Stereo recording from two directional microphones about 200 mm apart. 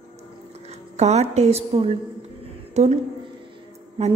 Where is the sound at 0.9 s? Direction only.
35° right (ahead or behind).